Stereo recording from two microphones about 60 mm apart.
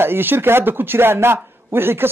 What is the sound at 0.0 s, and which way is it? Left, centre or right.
A man's voice, right.